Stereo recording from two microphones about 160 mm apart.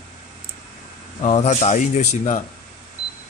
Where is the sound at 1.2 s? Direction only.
45° left (ahead or behind).